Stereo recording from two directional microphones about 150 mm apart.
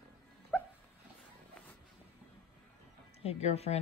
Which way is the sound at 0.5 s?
5° right (ahead or behind).